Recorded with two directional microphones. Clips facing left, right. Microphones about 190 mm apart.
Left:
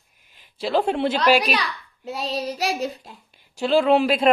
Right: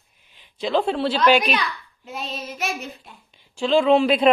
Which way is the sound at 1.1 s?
35° left (ahead or behind).